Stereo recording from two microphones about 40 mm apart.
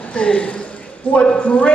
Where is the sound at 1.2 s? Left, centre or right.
Left.